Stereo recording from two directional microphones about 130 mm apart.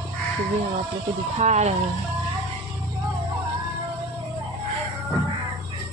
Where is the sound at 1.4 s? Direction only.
60° right (ahead or behind).